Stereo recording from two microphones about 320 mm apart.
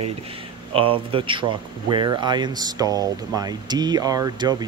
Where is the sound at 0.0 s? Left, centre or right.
Centre.